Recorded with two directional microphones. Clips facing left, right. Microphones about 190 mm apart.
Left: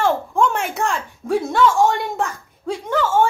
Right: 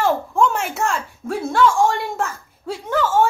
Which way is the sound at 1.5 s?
Centre (ahead or behind).